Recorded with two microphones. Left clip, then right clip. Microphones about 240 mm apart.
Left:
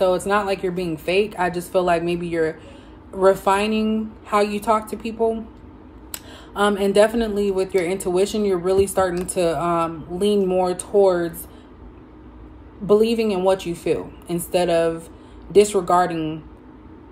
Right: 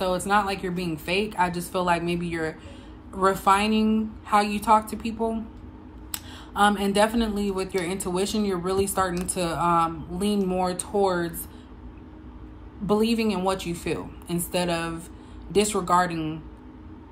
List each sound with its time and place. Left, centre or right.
0.3 s speech: centre
6.1 s a sound: centre
7.2 s speech: centre
12.8 s a woman's voice: centre